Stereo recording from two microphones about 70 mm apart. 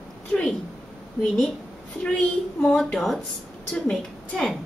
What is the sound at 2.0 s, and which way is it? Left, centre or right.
A woman's voice, centre.